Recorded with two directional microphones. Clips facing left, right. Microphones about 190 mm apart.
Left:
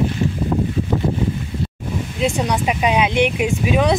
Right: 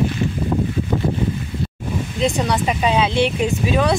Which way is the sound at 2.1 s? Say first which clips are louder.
Even; 10° left (ahead or behind).